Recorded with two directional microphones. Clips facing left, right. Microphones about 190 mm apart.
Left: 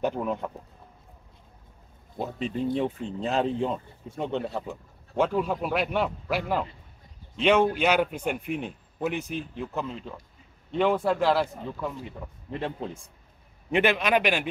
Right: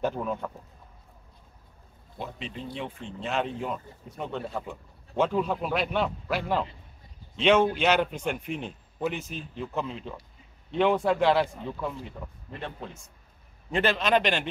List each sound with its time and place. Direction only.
0.0 s speech: 15° left (ahead or behind)
2.1 s speech: 45° left (ahead or behind); by 4.6 s 25° left (ahead or behind)
4.6 s speech: 10° left (ahead or behind)
9.6 s a man's voice: centre (ahead or behind)
12.4 s speech: 30° left (ahead or behind)
13.7 s speech: 15° left (ahead or behind)